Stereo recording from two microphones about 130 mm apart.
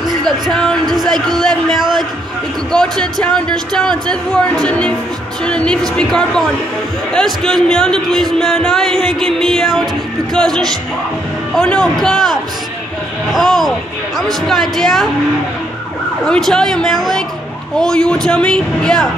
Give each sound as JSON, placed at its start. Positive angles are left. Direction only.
{"t": 0.0, "sound": "a sound", "side_deg": -30}
{"t": 0.5, "sound": "music", "side_deg": 5}
{"t": 1.4, "sound": "speech", "side_deg": 5}
{"t": 16.3, "sound": "speech", "side_deg": 5}